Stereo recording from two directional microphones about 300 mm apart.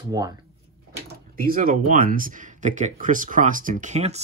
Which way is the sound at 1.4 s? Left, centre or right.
Right.